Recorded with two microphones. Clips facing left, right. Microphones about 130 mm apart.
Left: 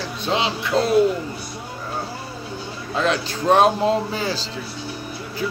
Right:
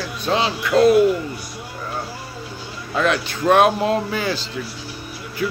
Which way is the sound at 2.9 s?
30° left (ahead or behind).